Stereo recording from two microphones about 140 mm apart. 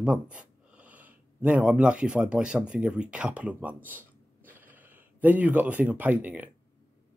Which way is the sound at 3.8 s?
15° right (ahead or behind).